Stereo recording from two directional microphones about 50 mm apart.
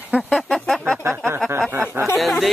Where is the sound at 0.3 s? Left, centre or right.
Centre.